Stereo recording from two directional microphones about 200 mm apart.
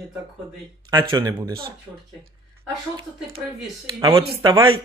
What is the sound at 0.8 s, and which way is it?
Speech, 20° right (ahead or behind).